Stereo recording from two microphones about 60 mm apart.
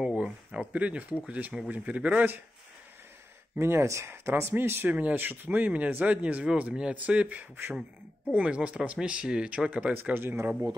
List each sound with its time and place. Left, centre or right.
0.2 s a sound: centre
1.2 s speech: centre
3.5 s speech: right
4.1 s speech: right
10.1 s speech: right